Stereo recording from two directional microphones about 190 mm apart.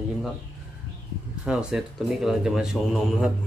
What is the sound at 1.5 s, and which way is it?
Speech, 5° right (ahead or behind).